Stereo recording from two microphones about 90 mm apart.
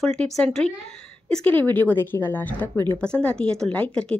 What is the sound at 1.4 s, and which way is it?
A woman's voice, 20° left (ahead or behind).